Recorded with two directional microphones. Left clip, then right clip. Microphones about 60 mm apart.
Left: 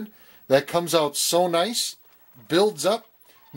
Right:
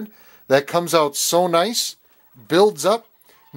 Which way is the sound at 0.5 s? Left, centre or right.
Centre.